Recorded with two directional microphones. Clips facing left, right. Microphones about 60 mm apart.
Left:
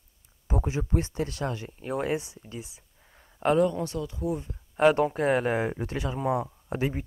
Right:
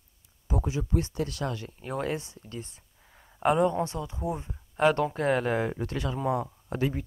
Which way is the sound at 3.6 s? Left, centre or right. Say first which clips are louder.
Even; right.